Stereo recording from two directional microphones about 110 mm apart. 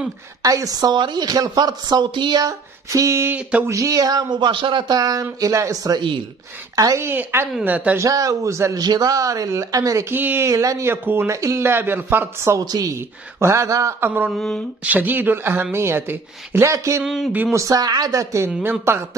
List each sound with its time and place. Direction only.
0.4 s speech: 30° right (ahead or behind)
5.9 s speech: 45° right (ahead or behind)
6.7 s speech: 30° right (ahead or behind)
7.1 s speech: 20° right (ahead or behind)
8.0 s speech: 30° right (ahead or behind)
12.6 s speech: 35° right (ahead or behind)
14.3 s speech: 5° left (ahead or behind)
14.8 s speech: 15° right (ahead or behind)
17.0 s speech: 5° right (ahead or behind)
17.5 s speech: 30° right (ahead or behind)